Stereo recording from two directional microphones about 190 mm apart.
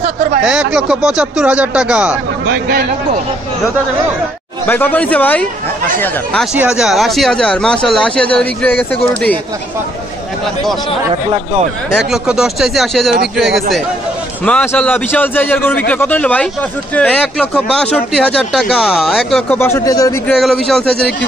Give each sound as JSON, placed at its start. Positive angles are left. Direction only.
{"t": 0.4, "sound": "speech", "side_deg": -5}
{"t": 2.4, "sound": "speech", "side_deg": -55}
{"t": 4.6, "sound": "a man's voice", "side_deg": 10}
{"t": 6.6, "sound": "speech", "side_deg": -5}
{"t": 12.1, "sound": "a man's voice", "side_deg": -5}
{"t": 19.6, "sound": "a man's voice", "side_deg": 15}
{"t": 20.2, "sound": "speech", "side_deg": 0}